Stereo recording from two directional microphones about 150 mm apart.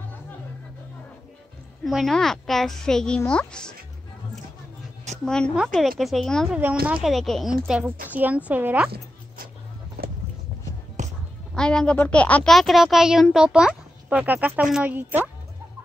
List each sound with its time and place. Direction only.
1.9 s a child's voice: centre (ahead or behind)
5.2 s a child's voice: 5° left (ahead or behind)
10.0 s vehicle: 90° right
11.0 s music: 55° right (ahead or behind)
11.5 s a child's voice: 5° left (ahead or behind); by 15.2 s 15° right (ahead or behind)